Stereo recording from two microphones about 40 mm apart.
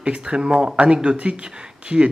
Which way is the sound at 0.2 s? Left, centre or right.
Right.